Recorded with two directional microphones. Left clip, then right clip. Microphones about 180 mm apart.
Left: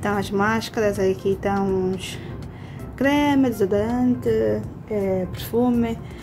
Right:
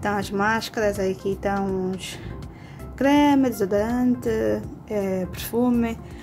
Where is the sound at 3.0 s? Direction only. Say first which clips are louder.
Right 1 dB; 20° right (ahead or behind); by 5.7 s 35° right (ahead or behind).